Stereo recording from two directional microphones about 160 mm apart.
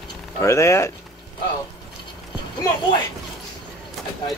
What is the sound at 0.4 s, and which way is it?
Speech, 20° left (ahead or behind).